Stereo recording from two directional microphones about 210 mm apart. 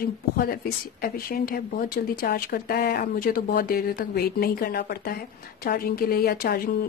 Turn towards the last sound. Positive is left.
turn(degrees=45)  # may be behind; listen again after turning